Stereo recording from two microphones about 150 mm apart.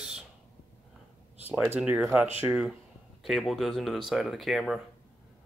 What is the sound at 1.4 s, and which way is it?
Speech, 10° right (ahead or behind).